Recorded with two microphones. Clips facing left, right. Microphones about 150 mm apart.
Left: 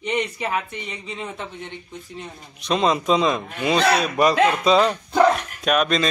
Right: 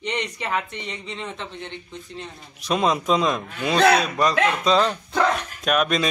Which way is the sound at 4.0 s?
10° left (ahead or behind).